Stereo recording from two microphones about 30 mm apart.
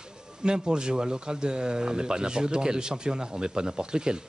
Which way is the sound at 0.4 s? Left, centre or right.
Right.